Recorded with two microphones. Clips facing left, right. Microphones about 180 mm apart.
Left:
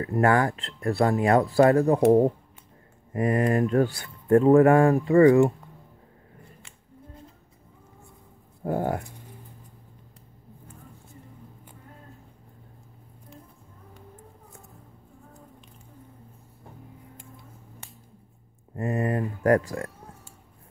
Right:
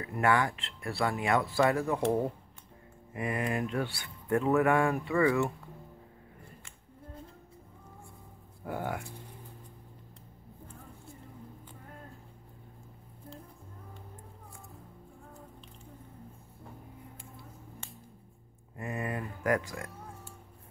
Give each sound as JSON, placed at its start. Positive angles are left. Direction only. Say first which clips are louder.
{"t": 0.0, "sound": "speech", "louder": "left 6 dB", "side_deg": 40}
{"t": 8.6, "sound": "speech", "louder": "left 9 dB", "side_deg": 40}
{"t": 18.8, "sound": "speech", "louder": "left 9 dB", "side_deg": 35}